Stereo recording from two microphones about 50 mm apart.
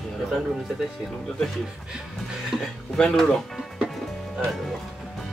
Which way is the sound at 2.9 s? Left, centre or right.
Centre.